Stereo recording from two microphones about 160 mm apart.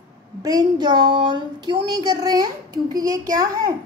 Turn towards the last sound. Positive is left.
turn(degrees=-25)  # may be behind; listen again after turning